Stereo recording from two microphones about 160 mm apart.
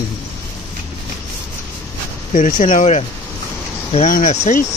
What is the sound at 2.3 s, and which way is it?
Speech, 55° left (ahead or behind).